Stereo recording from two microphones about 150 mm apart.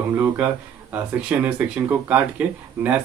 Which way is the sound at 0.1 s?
10° right (ahead or behind).